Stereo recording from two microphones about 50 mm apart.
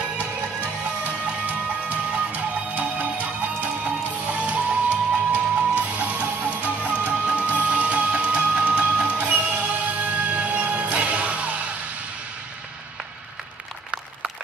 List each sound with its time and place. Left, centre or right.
1.0 s music: right